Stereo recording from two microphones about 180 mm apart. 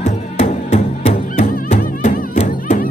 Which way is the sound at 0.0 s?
40° left (ahead or behind).